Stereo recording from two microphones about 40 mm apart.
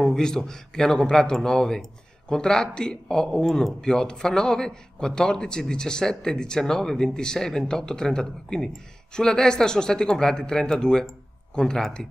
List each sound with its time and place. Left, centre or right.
0.0 s a man's voice: centre